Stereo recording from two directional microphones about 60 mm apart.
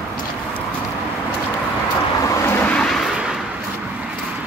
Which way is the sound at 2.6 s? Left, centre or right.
Centre.